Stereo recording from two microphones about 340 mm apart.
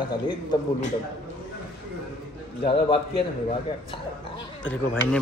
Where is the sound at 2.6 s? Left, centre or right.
Centre.